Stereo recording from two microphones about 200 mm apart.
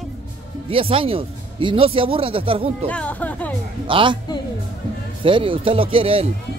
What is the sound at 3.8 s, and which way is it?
Speech, 25° right (ahead or behind).